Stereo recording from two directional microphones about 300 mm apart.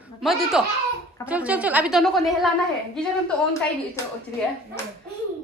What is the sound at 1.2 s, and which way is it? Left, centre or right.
A woman's voice, centre.